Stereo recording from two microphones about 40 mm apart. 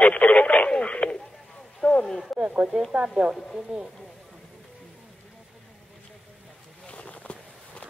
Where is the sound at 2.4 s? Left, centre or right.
Right.